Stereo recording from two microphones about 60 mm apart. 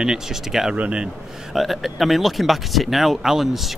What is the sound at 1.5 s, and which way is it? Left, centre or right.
A man's voice, centre.